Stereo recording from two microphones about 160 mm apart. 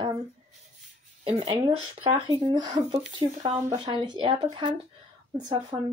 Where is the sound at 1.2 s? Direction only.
35° right (ahead or behind).